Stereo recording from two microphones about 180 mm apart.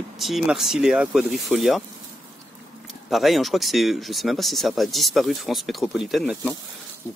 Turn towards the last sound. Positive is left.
turn(degrees=0)  # may be behind; listen again after turning